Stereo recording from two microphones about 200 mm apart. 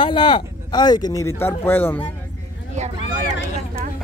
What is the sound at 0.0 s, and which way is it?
Speech, 25° left (ahead or behind).